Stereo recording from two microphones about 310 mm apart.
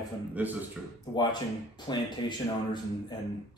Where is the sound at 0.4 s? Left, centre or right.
Centre.